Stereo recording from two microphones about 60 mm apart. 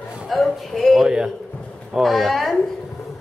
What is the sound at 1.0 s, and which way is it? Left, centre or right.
Speech, centre.